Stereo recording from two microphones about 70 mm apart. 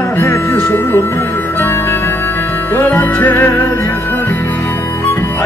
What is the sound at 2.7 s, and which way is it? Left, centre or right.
Music, left.